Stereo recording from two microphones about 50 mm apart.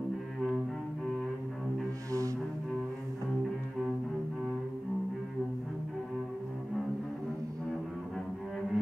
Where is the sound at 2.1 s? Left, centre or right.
Right.